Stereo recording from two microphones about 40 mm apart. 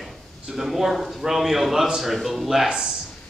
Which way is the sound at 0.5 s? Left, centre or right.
Centre.